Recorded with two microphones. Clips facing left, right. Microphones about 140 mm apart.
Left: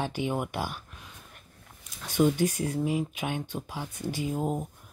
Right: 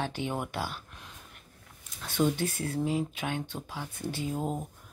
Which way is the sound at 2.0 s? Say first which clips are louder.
Left 4 dB; 15° left (ahead or behind).